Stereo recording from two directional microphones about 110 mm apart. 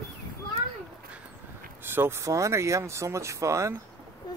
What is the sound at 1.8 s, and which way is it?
Speech, 20° right (ahead or behind).